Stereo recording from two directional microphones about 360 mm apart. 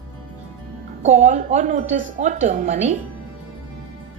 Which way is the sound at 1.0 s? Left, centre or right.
Centre.